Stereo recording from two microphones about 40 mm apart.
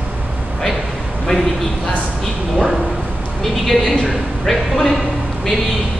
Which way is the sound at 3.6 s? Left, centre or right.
Centre.